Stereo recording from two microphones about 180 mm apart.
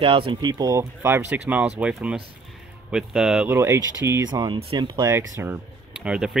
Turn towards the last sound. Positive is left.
turn(degrees=-5)  # may be behind; listen again after turning